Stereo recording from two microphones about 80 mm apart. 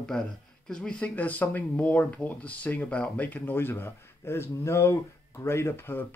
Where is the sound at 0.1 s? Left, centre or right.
Centre.